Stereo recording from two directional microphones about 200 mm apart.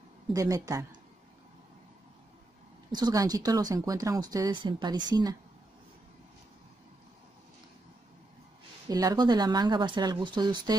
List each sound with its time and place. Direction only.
0.3 s a woman's voice: 15° right (ahead or behind)
2.9 s speech: 20° right (ahead or behind)
8.8 s speech: 20° right (ahead or behind)